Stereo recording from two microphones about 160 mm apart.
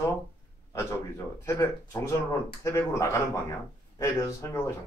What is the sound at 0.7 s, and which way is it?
Speech, 15° left (ahead or behind).